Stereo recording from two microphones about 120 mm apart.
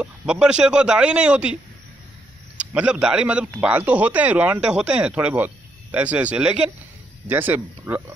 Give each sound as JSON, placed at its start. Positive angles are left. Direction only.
{"t": 0.0, "sound": "a man's voice", "side_deg": -5}